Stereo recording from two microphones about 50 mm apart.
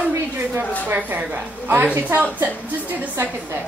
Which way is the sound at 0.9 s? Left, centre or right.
Right.